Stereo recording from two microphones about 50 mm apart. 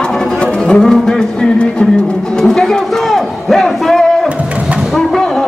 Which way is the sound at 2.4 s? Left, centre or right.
Centre.